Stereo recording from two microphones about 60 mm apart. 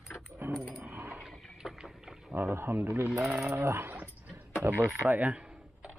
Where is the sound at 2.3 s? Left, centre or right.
Right.